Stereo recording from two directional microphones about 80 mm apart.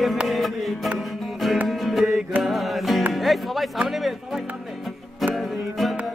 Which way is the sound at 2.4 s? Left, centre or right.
Centre.